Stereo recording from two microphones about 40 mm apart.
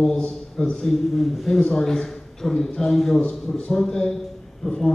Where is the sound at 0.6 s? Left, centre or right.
Left.